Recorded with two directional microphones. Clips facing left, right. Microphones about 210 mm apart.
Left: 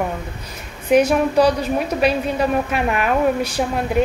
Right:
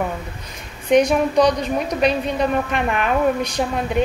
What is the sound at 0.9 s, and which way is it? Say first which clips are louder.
A woman's voice: left 1 dB; 5° left (ahead or behind).